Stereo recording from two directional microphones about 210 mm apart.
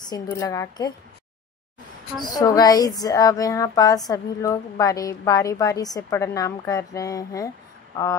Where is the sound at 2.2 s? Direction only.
20° left (ahead or behind).